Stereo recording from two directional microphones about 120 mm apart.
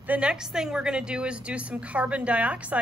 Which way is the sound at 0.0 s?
10° right (ahead or behind).